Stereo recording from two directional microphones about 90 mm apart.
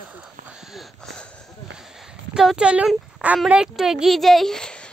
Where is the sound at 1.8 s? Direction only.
5° right (ahead or behind).